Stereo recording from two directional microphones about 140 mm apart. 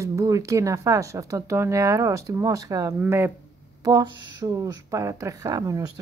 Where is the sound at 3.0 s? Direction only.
15° right (ahead or behind).